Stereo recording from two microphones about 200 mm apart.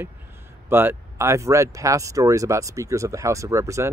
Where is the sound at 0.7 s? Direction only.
10° right (ahead or behind).